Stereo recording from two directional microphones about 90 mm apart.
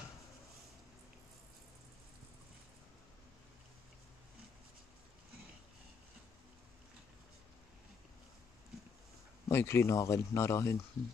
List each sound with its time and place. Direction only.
9.5 s speech: 30° left (ahead or behind)